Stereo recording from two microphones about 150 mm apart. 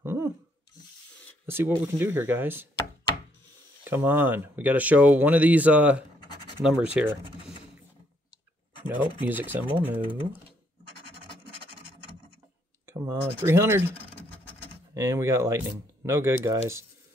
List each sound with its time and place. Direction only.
0.0 s a sound: 15° right (ahead or behind)
1.4 s speech: 15° right (ahead or behind)
3.8 s speech: 15° right (ahead or behind)
8.8 s speech: 10° right (ahead or behind)
12.8 s speech: 20° right (ahead or behind)
15.0 s speech: 15° right (ahead or behind)